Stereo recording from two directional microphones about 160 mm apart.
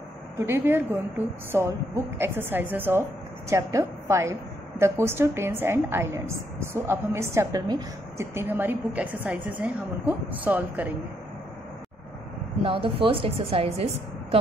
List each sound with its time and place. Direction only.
0.5 s a woman's voice: 15° right (ahead or behind)
12.6 s a woman's voice: 35° right (ahead or behind)